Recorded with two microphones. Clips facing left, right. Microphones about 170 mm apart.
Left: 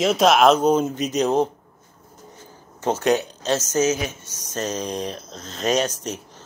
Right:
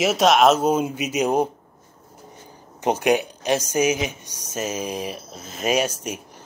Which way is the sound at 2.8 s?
15° right (ahead or behind).